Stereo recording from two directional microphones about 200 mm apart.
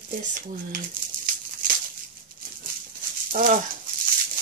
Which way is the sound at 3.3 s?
45° right (ahead or behind).